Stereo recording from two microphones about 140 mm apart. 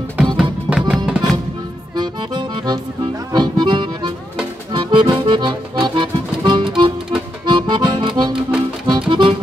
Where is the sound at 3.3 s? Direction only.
30° right (ahead or behind).